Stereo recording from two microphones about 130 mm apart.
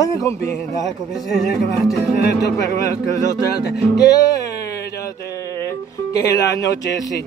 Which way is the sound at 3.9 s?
30° left (ahead or behind).